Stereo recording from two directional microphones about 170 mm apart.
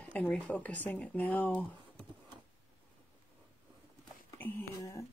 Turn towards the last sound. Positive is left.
turn(degrees=15)  # may be behind; listen again after turning